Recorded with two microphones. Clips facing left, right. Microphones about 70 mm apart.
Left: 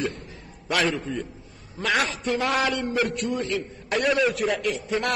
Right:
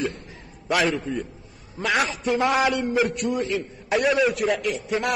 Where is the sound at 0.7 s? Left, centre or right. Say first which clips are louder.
Right 2 dB; centre.